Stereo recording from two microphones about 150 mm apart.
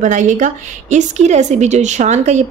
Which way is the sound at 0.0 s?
55° right (ahead or behind).